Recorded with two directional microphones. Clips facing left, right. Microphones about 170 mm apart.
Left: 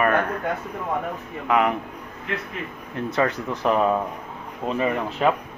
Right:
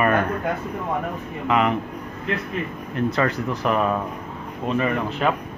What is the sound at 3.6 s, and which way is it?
Speech, 20° left (ahead or behind).